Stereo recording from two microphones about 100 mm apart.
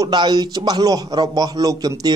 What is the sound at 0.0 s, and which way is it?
A man's voice, 45° right (ahead or behind).